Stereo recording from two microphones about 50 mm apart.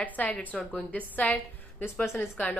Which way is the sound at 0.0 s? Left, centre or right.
Left.